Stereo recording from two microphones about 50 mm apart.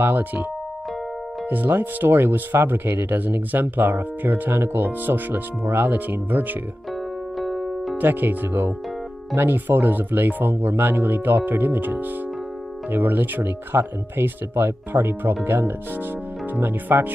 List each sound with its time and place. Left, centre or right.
0.0 s speech: right
1.5 s speech: right
5.9 s speech: right
7.3 s music: centre
8.0 s speech: right